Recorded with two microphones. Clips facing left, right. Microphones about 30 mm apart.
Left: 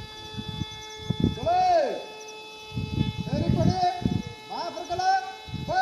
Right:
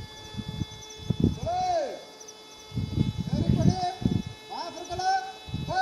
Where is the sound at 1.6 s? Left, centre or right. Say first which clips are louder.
Left 8 dB; left.